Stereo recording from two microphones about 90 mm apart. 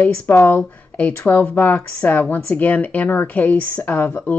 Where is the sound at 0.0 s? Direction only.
20° left (ahead or behind).